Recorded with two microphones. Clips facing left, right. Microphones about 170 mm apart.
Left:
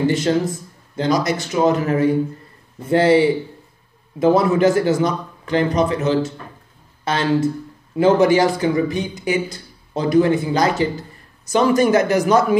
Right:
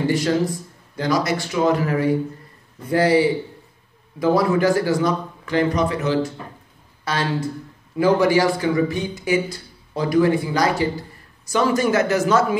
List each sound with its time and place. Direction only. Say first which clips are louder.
0.1 s a man's voice: left 1 dB; 25° left (ahead or behind)